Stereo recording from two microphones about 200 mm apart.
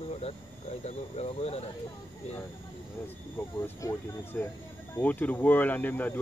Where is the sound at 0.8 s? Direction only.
30° left (ahead or behind).